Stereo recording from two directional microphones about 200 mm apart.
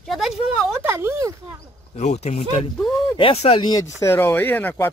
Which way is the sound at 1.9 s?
35° left (ahead or behind).